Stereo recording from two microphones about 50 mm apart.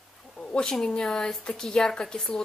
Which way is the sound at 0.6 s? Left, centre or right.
Centre.